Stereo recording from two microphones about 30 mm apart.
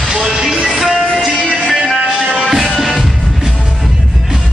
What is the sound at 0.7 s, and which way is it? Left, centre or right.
Music, centre.